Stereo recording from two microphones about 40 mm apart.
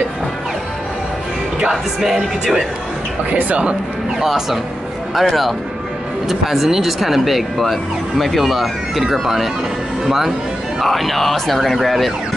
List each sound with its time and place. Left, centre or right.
1.6 s speech: centre
3.3 s speech: right
4.2 s speech: centre